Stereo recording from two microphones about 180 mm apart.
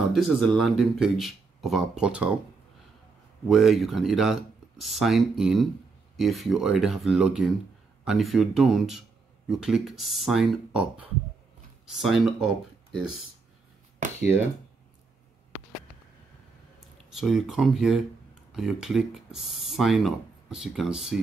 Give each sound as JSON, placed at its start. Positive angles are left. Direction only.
{"t": 0.1, "sound": "speech", "side_deg": 0}
{"t": 3.4, "sound": "speech", "side_deg": 0}
{"t": 14.0, "sound": "a sound", "side_deg": -45}
{"t": 17.1, "sound": "speech", "side_deg": 0}